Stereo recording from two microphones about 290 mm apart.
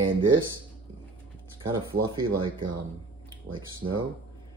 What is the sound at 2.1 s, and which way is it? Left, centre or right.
Speech, centre.